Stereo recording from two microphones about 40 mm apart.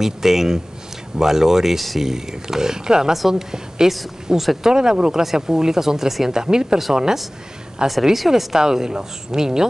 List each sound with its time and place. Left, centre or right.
0.0 s speech: centre
8.5 s speech: centre